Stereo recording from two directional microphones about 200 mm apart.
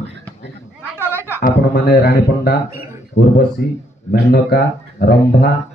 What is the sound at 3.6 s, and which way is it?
Speech, 50° left (ahead or behind).